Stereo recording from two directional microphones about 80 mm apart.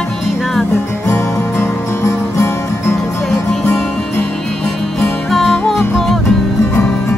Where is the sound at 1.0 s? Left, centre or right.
Left.